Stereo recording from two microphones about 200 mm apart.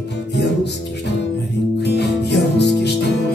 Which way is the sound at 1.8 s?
55° left (ahead or behind).